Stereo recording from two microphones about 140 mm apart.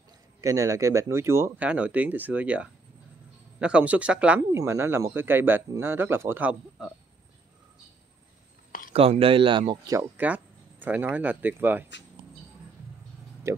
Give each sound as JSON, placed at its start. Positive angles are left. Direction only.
{"t": 0.4, "sound": "speech", "side_deg": -20}
{"t": 4.5, "sound": "speech", "side_deg": -20}
{"t": 8.9, "sound": "speech", "side_deg": -45}
{"t": 9.9, "sound": "speech", "side_deg": -10}
{"t": 13.5, "sound": "speech", "side_deg": -20}